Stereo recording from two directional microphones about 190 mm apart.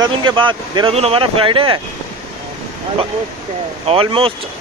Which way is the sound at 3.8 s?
30° right (ahead or behind).